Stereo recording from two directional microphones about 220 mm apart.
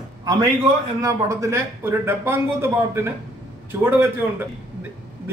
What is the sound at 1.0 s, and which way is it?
Speech, 15° right (ahead or behind).